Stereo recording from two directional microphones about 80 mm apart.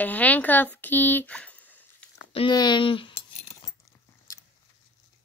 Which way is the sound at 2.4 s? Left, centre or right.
Left.